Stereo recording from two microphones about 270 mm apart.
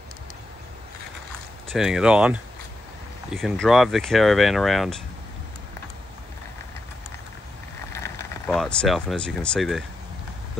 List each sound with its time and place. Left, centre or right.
1.7 s speech: centre
7.9 s speech: centre